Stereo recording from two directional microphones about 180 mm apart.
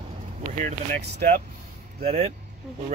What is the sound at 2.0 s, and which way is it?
Speech, 35° right (ahead or behind).